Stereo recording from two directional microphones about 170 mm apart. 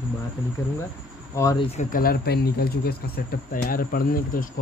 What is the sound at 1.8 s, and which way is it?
Speech, 55° left (ahead or behind).